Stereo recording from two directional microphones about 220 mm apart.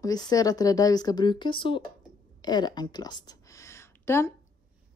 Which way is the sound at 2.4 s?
20° left (ahead or behind).